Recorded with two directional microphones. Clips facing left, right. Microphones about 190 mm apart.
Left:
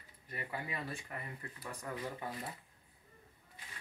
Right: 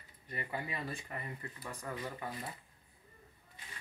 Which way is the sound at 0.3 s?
5° left (ahead or behind).